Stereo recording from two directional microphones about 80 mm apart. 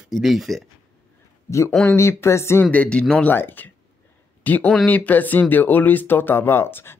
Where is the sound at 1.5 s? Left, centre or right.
Left.